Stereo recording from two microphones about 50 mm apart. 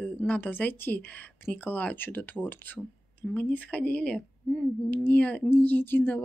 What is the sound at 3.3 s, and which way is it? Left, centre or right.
Speech, left.